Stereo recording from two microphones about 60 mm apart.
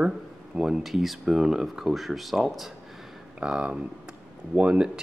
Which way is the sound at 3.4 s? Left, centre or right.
Centre.